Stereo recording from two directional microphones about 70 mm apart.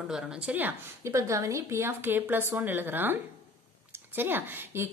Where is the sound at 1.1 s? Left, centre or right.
Right.